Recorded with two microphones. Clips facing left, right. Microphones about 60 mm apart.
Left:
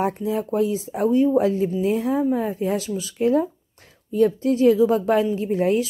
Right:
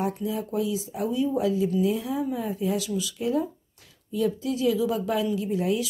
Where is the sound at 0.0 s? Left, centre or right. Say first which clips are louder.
Left 5 dB; left.